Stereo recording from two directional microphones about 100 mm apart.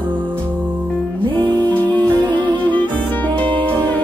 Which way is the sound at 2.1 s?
50° right (ahead or behind).